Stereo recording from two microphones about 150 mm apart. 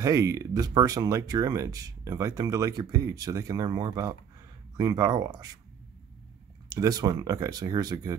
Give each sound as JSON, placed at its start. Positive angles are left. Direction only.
{"t": 0.0, "sound": "speech", "side_deg": -20}
{"t": 6.7, "sound": "speech", "side_deg": -25}